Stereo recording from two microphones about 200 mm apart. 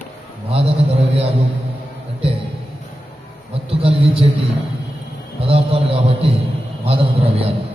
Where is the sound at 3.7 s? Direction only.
30° right (ahead or behind).